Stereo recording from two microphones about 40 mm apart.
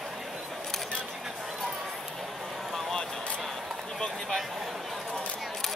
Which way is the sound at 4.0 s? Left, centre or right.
Centre.